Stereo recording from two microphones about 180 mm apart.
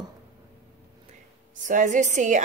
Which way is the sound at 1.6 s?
45° right (ahead or behind).